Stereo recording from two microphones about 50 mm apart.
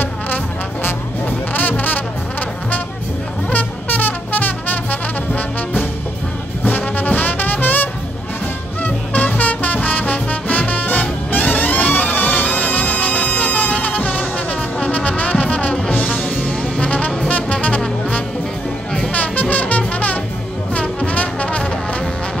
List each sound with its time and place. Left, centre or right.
1.2 s music: left
3.4 s music: left
7.0 s music: left
16.8 s music: left
19.1 s music: left
20.7 s brass instrument: left